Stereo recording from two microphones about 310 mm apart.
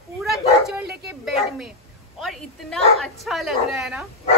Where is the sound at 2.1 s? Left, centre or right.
Centre.